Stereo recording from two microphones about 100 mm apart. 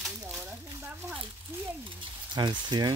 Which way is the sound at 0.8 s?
20° right (ahead or behind).